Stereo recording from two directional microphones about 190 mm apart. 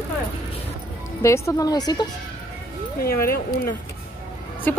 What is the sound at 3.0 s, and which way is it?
Speech, 50° left (ahead or behind).